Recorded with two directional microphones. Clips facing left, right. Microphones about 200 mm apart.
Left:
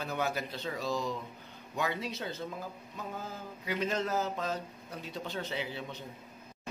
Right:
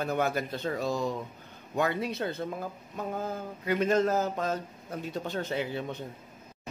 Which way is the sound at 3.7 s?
50° right (ahead or behind).